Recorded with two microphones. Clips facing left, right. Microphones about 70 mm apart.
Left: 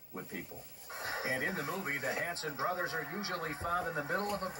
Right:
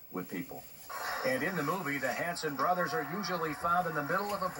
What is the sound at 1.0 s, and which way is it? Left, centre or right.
Speech, right.